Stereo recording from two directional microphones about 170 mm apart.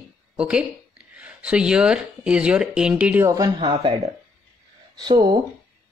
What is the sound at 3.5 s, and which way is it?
Speech, 30° right (ahead or behind).